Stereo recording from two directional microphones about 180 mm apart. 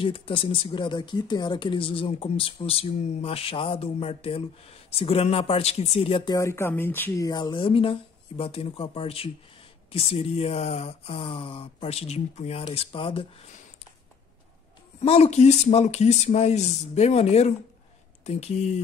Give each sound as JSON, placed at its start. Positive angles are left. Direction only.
{"t": 0.0, "sound": "speech", "side_deg": 30}
{"t": 6.3, "sound": "speech", "side_deg": 15}
{"t": 15.0, "sound": "speech", "side_deg": 35}